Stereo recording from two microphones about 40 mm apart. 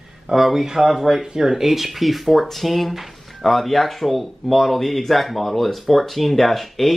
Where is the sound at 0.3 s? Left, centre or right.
Centre.